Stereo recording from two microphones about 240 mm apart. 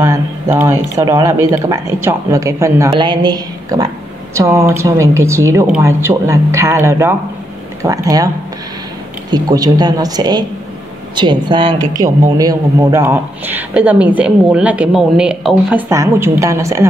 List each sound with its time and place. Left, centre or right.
0.0 s a man's voice: centre
9.3 s a man's voice: centre